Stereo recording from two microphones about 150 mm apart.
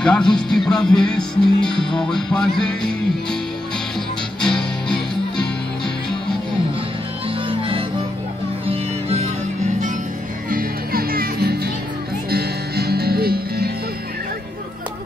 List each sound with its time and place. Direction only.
0.0 s music: 5° left (ahead or behind)
4.4 s music: 5° left (ahead or behind)
7.2 s music: 35° right (ahead or behind)
10.5 s music: 80° right